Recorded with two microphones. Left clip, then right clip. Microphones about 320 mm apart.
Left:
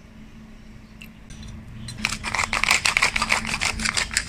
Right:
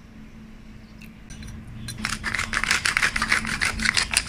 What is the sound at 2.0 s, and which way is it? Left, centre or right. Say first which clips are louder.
Scissors: left 2 dB; centre.